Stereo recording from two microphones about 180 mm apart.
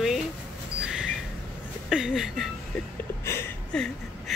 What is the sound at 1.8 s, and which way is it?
Speech, centre (ahead or behind).